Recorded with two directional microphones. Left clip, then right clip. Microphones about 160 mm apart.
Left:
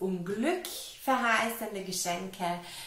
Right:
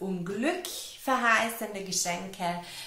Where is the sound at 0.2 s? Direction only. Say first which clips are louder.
Right 1 dB; 25° right (ahead or behind).